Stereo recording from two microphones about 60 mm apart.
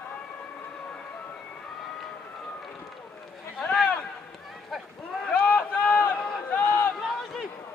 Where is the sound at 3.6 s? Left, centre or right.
Centre.